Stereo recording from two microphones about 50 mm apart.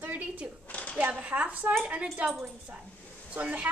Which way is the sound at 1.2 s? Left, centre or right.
Right.